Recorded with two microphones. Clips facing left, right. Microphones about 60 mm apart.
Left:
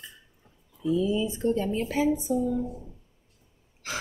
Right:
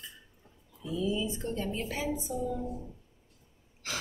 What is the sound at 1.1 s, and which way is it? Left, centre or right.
Speech, centre.